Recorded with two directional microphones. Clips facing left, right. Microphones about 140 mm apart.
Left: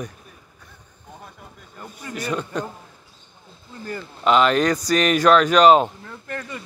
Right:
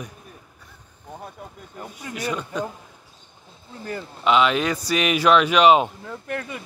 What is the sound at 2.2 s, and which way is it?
Speech, centre (ahead or behind).